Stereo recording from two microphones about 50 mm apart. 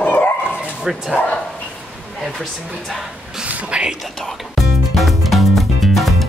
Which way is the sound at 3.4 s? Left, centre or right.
Right.